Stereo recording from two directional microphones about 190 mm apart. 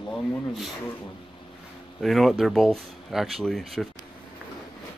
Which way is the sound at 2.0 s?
Centre (ahead or behind).